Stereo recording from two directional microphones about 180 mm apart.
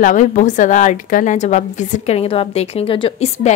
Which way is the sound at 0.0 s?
45° left (ahead or behind).